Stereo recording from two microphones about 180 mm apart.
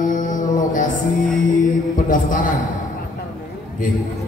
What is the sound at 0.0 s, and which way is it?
Music, 45° left (ahead or behind).